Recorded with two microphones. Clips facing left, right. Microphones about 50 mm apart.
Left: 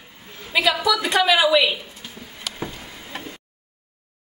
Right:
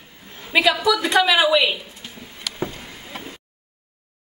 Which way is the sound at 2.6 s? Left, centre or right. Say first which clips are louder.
Right 6 dB; centre.